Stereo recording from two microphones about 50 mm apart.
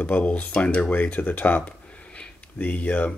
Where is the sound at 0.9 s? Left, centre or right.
Left.